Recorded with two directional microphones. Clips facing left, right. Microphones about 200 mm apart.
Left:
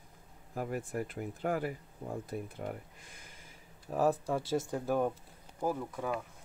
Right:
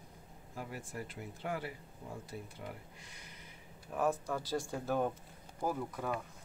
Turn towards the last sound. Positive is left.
turn(degrees=0)  # may be behind; listen again after turning